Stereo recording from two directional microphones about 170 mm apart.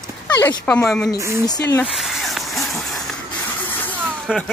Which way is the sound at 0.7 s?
5° left (ahead or behind).